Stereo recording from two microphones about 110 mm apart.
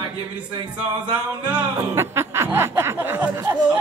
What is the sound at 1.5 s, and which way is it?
Speech, 20° right (ahead or behind).